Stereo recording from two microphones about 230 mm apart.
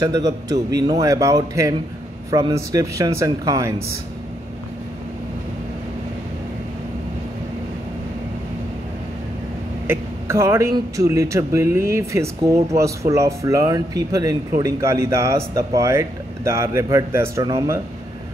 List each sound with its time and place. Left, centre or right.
0.0 s speech: centre
9.8 s a sound: centre
11.0 s speech: centre